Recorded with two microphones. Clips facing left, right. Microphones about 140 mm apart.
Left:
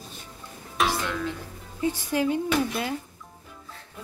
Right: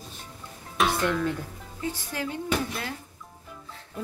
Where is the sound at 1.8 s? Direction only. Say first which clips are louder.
Left 7 dB; 15° left (ahead or behind).